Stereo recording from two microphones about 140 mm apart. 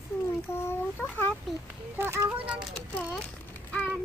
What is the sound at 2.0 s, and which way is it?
Speech, 15° right (ahead or behind).